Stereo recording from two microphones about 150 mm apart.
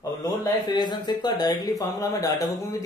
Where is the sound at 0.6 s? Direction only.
30° left (ahead or behind).